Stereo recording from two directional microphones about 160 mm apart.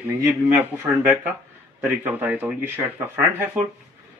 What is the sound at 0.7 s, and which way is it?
A man's voice, 15° right (ahead or behind).